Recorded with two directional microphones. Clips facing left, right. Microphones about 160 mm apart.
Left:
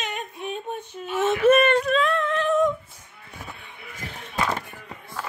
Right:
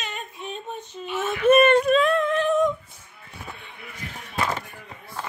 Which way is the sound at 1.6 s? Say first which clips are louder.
Right 3 dB; 15° right (ahead or behind).